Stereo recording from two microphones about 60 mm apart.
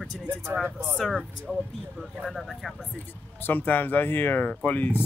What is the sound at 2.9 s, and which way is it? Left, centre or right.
Speech, left.